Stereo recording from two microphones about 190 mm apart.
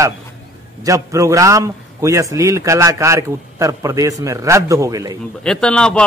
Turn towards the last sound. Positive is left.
turn(degrees=5)  # may be behind; listen again after turning